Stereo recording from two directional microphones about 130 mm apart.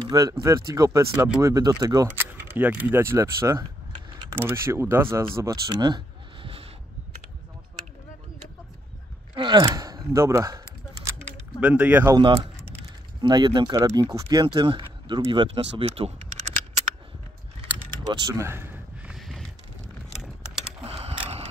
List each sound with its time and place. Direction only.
0.0 s speech: 30° right (ahead or behind)
2.1 s speech: 15° right (ahead or behind)
5.7 s a sound: 35° right (ahead or behind)
9.3 s speech: 35° right (ahead or behind)
11.6 s speech: 10° right (ahead or behind)
12.2 s speech: 40° right (ahead or behind)
18.2 s speech: 20° right (ahead or behind)
19.0 s a sound: centre (ahead or behind)
20.8 s a sound: 50° right (ahead or behind)